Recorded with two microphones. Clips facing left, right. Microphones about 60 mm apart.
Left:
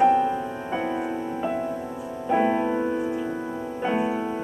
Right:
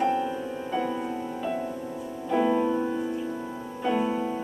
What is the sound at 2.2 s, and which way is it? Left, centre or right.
Music, left.